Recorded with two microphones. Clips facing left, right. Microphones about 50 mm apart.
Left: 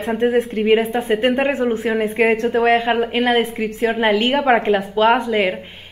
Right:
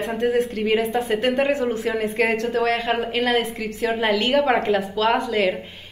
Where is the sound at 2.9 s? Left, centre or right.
Centre.